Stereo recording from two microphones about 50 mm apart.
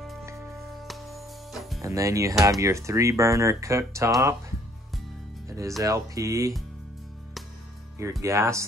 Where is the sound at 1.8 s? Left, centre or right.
Right.